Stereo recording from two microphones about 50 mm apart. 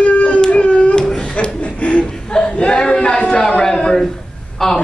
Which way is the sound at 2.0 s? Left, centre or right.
Centre.